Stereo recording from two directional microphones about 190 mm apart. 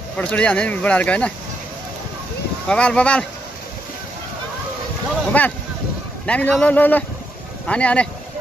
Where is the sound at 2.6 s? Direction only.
5° left (ahead or behind).